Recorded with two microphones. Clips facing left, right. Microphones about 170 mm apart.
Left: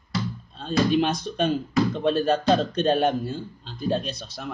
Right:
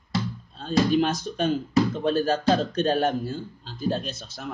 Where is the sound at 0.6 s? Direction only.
5° right (ahead or behind).